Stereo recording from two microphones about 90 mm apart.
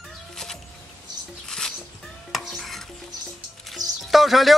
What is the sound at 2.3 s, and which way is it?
Stir, centre (ahead or behind).